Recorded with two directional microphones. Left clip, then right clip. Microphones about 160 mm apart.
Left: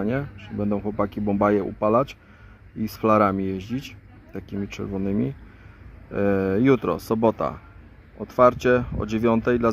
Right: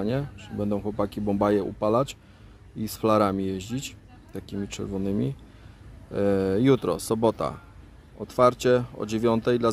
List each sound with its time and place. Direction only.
0.0 s speech: 10° right (ahead or behind)